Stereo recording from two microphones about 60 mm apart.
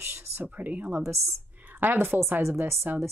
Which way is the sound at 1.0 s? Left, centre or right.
Right.